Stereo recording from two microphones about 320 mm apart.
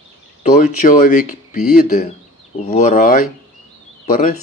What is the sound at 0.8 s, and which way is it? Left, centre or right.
Speech, left.